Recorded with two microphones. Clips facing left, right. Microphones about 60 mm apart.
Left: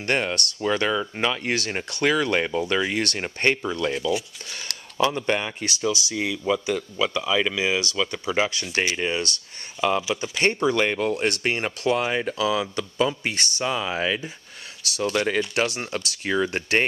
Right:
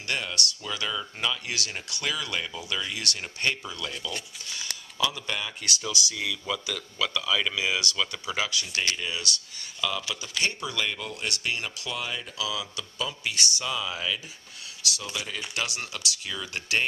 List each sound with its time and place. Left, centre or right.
0.0 s speech: left; by 8.4 s centre
8.4 s speech: left
15.0 s speech: left